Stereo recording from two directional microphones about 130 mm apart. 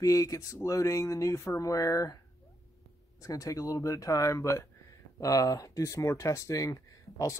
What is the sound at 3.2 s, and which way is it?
Speech, 25° left (ahead or behind).